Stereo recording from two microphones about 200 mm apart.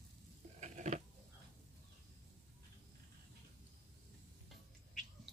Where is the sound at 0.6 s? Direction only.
35° right (ahead or behind).